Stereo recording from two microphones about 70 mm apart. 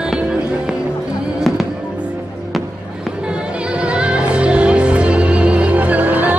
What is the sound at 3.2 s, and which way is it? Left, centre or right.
Music, centre.